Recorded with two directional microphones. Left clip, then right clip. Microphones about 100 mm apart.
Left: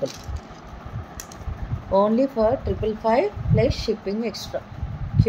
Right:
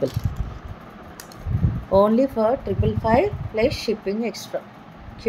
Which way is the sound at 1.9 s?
40° right (ahead or behind).